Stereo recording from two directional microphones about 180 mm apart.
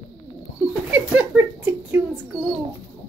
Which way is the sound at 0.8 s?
10° right (ahead or behind).